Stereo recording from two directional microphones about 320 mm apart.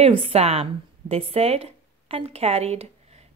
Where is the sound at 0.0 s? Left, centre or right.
Centre.